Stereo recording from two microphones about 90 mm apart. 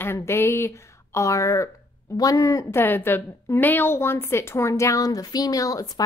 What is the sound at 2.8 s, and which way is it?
A woman's voice, 20° left (ahead or behind).